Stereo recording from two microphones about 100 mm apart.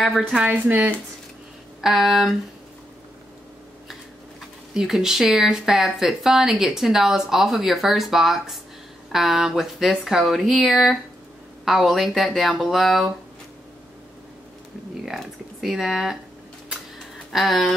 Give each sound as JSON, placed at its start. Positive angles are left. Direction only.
{"t": 0.0, "sound": "speech", "side_deg": -5}
{"t": 0.5, "sound": "speech", "side_deg": -20}
{"t": 1.8, "sound": "speech", "side_deg": -5}
{"t": 4.7, "sound": "speech", "side_deg": -5}
{"t": 15.0, "sound": "speech", "side_deg": -5}
{"t": 17.3, "sound": "speech", "side_deg": 0}